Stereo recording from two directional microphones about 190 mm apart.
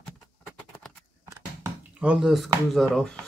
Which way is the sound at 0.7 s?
5° left (ahead or behind).